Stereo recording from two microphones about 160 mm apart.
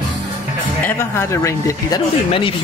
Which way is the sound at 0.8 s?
15° left (ahead or behind).